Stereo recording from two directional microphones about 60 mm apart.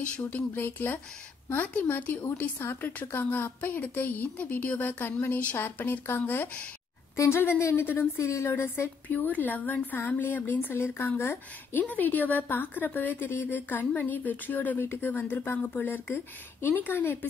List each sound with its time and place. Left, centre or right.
0.0 s a woman's voice: left
7.7 s a woman's voice: left
8.2 s a woman's voice: left
9.1 s a woman's voice: left